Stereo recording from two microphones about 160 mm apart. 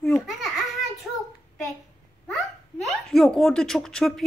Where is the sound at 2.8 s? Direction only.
Centre (ahead or behind).